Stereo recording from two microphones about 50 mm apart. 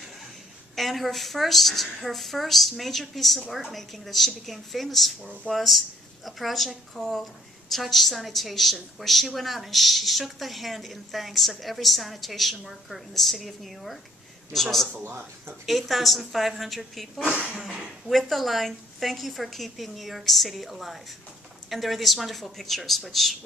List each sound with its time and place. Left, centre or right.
0.7 s a woman's voice: centre
15.0 s speech: right
15.6 s a woman's voice: centre
17.2 s speech: right
18.0 s a woman's voice: centre